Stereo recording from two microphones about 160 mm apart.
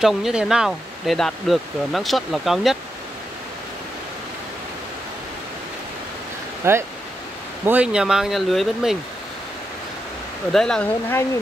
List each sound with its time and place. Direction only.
0.0 s speech: 5° right (ahead or behind)
6.6 s speech: 15° right (ahead or behind); by 8.9 s centre (ahead or behind)
10.5 s speech: 5° left (ahead or behind)